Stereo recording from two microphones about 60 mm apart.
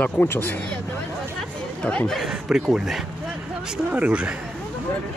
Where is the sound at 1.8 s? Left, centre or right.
Centre.